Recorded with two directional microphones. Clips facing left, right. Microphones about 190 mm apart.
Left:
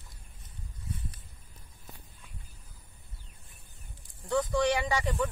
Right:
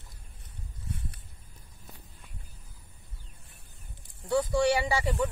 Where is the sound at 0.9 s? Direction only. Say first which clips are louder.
Right 1 dB; 70° right (ahead or behind).